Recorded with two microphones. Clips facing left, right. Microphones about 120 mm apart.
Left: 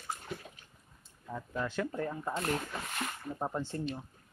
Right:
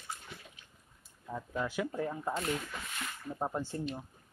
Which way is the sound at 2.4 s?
50° left (ahead or behind).